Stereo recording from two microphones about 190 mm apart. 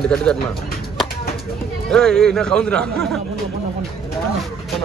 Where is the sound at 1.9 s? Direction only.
5° left (ahead or behind).